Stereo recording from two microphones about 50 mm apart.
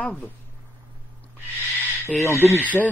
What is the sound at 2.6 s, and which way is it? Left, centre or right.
Speech, left.